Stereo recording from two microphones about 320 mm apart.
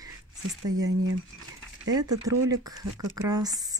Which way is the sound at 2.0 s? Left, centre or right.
Centre.